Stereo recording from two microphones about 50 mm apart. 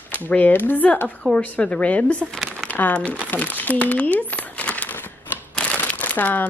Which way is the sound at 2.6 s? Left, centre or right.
Left.